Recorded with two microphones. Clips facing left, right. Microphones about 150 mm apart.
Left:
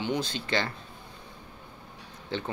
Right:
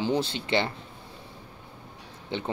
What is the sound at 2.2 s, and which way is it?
Speech, 20° right (ahead or behind).